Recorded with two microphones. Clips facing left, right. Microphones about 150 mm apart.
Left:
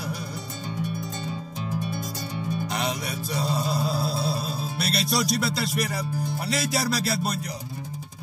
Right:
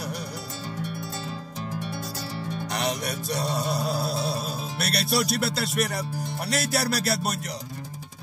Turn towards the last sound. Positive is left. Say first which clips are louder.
# even
turn(degrees=-65)  # may be behind; listen again after turning